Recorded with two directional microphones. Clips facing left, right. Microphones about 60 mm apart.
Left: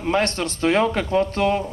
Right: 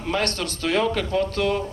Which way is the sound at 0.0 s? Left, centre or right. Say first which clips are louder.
Left 4 dB; left.